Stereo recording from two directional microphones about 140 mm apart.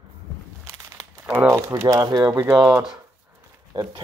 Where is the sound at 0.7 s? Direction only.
20° right (ahead or behind).